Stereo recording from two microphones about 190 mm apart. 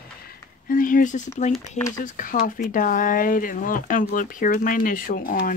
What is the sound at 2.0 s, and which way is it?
Speech, 45° left (ahead or behind).